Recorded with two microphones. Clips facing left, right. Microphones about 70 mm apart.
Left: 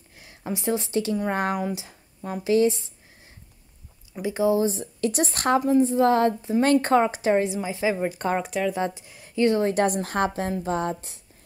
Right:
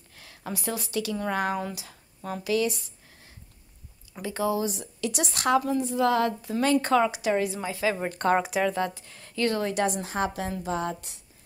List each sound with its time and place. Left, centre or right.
0.1 s speech: centre
1.5 s speech: centre
4.2 s speech: centre
7.4 s a woman's voice: centre
8.1 s speech: centre
8.7 s speech: centre
9.7 s a woman's voice: left
10.3 s speech: left